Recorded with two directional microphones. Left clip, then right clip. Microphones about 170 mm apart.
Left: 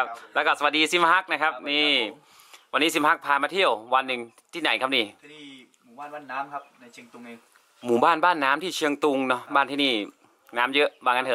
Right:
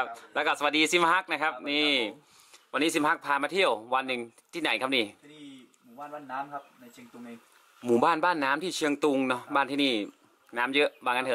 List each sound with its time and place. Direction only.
0.0 s a man's voice: 10° left (ahead or behind)
7.8 s a man's voice: 10° left (ahead or behind)
8.3 s speech: 45° left (ahead or behind)
8.6 s a man's voice: 15° left (ahead or behind)
10.5 s speech: 50° left (ahead or behind)
11.0 s a man's voice: 10° left (ahead or behind)